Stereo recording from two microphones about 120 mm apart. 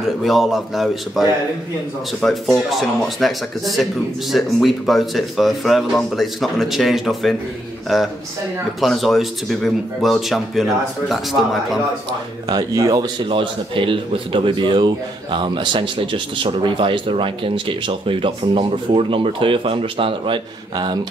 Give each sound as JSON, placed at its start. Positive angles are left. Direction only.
{"t": 0.2, "sound": "speech", "side_deg": 0}
{"t": 2.2, "sound": "speech", "side_deg": 5}
{"t": 12.4, "sound": "a man's voice", "side_deg": -35}